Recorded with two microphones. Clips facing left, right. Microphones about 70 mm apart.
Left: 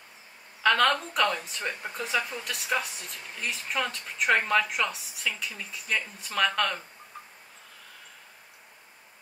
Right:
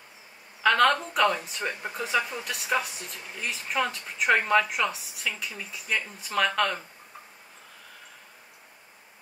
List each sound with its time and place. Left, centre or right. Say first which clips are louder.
0.6 s speech: right 2 dB; centre